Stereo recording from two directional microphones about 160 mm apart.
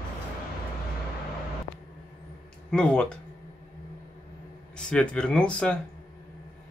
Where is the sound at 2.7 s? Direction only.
5° left (ahead or behind).